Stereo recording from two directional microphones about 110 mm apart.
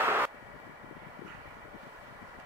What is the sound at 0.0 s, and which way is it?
Vehicle, 25° right (ahead or behind).